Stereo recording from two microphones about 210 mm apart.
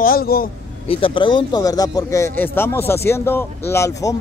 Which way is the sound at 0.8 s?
25° left (ahead or behind).